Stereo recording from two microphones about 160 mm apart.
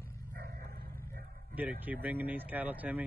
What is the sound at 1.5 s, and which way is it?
Speech, 10° right (ahead or behind).